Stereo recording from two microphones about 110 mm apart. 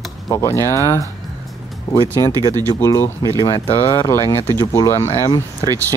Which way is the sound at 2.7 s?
25° left (ahead or behind).